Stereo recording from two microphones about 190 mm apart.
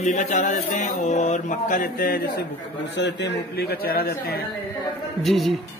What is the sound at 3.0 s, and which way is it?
Speech, 60° left (ahead or behind).